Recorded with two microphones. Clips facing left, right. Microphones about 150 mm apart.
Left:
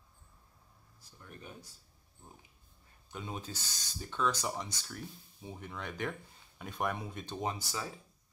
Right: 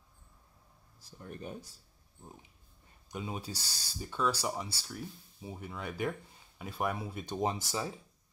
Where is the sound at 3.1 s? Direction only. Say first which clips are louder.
Right 3 dB; 10° right (ahead or behind).